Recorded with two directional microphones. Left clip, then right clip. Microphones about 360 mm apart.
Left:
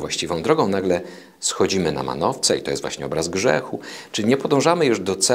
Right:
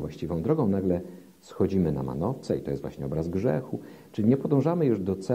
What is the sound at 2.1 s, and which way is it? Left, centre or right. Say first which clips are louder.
Speech: left 10 dB; centre.